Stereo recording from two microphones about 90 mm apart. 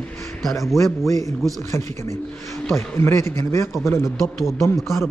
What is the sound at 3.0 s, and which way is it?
Speech, 30° left (ahead or behind).